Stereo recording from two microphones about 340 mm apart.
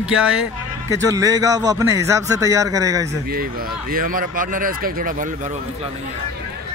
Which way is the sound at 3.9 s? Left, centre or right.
Right.